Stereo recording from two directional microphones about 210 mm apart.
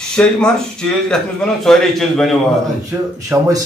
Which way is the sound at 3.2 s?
15° right (ahead or behind).